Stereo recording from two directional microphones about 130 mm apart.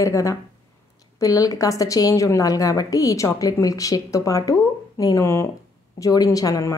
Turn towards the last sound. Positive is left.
turn(degrees=25)  # may be behind; listen again after turning